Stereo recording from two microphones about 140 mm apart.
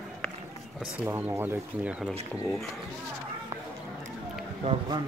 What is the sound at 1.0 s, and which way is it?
Speech, 15° right (ahead or behind).